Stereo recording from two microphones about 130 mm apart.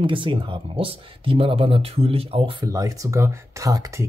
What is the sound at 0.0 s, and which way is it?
Speech, 40° right (ahead or behind).